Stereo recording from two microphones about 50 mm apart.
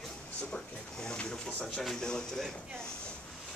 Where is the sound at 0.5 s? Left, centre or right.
Centre.